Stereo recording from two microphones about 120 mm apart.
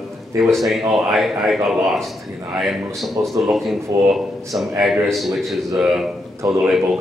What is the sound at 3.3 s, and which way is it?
A man's voice, centre (ahead or behind).